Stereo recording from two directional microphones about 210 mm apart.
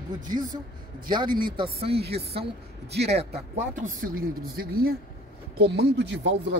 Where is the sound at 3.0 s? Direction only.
30° right (ahead or behind).